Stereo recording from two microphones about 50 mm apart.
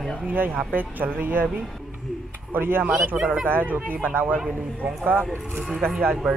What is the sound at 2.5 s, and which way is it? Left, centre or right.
Speech, right.